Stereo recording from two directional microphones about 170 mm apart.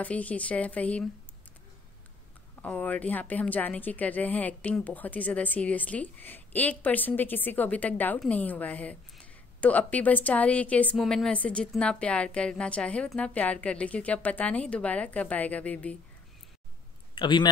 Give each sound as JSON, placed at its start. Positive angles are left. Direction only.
{"t": 0.0, "sound": "a woman's voice", "side_deg": 10}
{"t": 2.6, "sound": "a woman's voice", "side_deg": 10}
{"t": 17.1, "sound": "a man's voice", "side_deg": 30}